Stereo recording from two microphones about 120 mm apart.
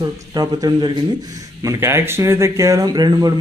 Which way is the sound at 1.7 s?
20° right (ahead or behind).